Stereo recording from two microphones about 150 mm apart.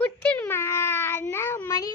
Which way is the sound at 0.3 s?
15° left (ahead or behind).